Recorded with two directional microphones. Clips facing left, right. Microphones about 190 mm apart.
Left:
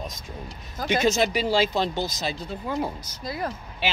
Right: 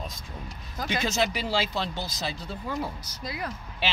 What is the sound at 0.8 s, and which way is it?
Speech, 50° left (ahead or behind).